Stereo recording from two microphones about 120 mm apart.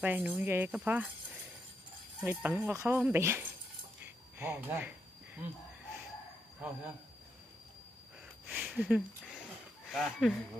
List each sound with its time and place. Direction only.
0.0 s speech: 10° right (ahead or behind)
2.1 s speech: 10° right (ahead or behind)
2.7 s speech: 20° right (ahead or behind)
4.4 s a sound: 15° right (ahead or behind)
8.5 s a sound: 10° right (ahead or behind)
9.8 s speech: centre (ahead or behind)